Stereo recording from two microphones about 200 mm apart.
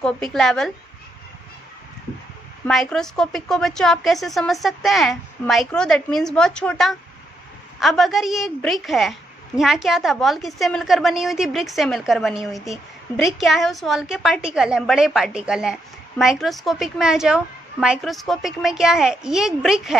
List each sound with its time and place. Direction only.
0.0 s a woman's voice: 5° left (ahead or behind)
2.6 s a woman's voice: centre (ahead or behind)